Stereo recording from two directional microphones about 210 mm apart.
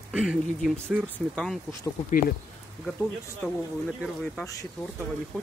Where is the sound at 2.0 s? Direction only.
40° left (ahead or behind).